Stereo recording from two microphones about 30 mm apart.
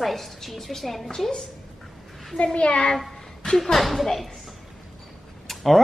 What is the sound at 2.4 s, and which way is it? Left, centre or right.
Speech, left.